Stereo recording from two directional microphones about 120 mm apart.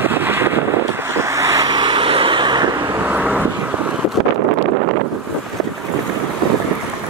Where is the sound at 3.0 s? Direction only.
15° right (ahead or behind).